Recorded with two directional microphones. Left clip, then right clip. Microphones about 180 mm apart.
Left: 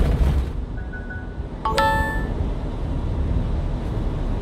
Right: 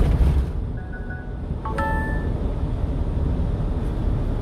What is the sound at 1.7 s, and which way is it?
Music, 65° left (ahead or behind).